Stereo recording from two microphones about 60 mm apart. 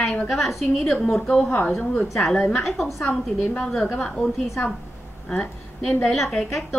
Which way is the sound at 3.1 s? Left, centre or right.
Centre.